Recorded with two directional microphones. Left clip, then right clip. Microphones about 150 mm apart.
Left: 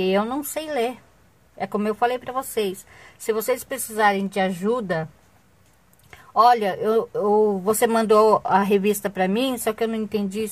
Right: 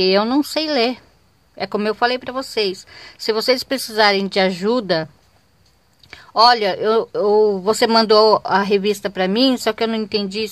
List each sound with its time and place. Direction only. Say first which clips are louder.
0.0 s speech: right 6 dB; 30° right (ahead or behind)
8.5 s speech: right 2 dB; 5° right (ahead or behind)
9.8 s speech: right 4 dB; 30° right (ahead or behind)